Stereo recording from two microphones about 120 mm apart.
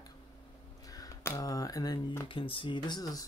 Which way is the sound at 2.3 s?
45° left (ahead or behind).